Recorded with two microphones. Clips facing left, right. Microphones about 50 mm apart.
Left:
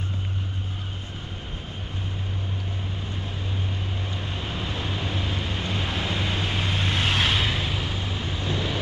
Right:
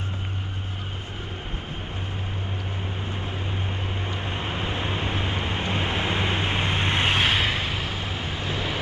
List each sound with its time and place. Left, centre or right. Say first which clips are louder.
4.1 s vehicle: right 3 dB; right